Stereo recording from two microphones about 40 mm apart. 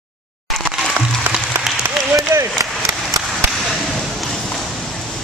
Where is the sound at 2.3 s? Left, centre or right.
Right.